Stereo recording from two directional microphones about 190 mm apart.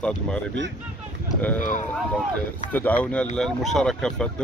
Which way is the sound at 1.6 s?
45° left (ahead or behind).